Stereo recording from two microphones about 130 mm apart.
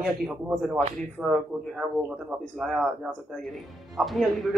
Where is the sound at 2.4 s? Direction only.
Centre (ahead or behind).